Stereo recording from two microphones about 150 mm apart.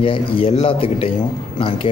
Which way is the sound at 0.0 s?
35° left (ahead or behind).